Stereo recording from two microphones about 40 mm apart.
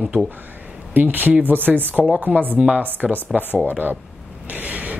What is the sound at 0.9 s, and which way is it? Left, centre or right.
Speech, right.